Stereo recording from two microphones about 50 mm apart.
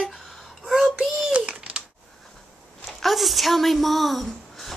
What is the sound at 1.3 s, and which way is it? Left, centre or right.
Typewriter, right.